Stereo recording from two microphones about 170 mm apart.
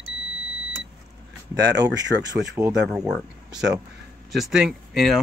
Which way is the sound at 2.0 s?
90° right.